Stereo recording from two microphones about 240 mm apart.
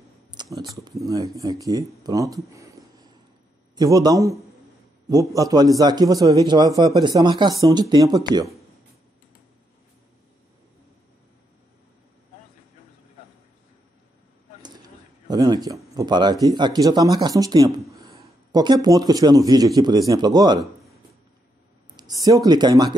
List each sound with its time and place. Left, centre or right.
0.3 s speech: centre
14.6 s a sound: centre
16.0 s speech: centre
21.9 s speech: centre